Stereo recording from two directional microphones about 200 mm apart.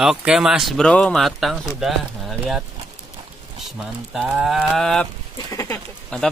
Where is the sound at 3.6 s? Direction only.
Centre (ahead or behind).